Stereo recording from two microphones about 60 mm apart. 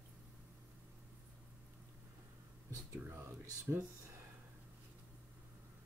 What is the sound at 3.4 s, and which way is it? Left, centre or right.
Speech, right.